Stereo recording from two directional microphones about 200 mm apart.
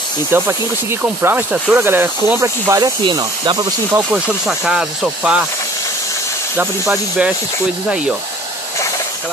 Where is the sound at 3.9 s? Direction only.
5° right (ahead or behind).